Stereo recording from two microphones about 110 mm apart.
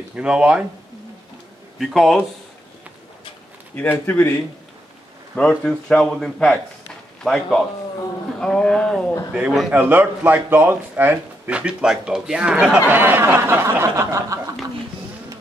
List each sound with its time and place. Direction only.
0.1 s speech: 10° right (ahead or behind)
1.8 s a man's voice: centre (ahead or behind)
4.0 s speech: 20° left (ahead or behind)
5.3 s a man's voice: 5° left (ahead or behind)
9.3 s speech: 5° right (ahead or behind)
12.9 s snicker: 20° right (ahead or behind)